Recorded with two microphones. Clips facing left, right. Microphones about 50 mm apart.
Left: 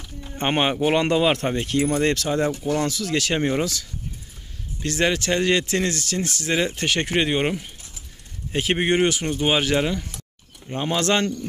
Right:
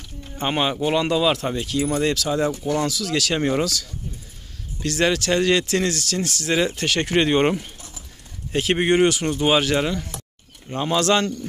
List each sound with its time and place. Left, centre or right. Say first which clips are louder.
0.4 s speech: left 1 dB; left
7.2 s speech: right 6 dB; centre
11.0 s speech: right 2 dB; left